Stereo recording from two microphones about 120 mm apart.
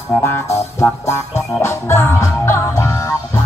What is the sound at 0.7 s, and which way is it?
Music, 25° left (ahead or behind).